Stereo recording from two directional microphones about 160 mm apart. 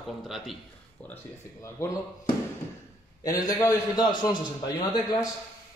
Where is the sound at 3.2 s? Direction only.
20° left (ahead or behind).